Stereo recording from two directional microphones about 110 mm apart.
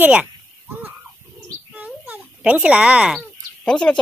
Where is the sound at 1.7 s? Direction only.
15° right (ahead or behind).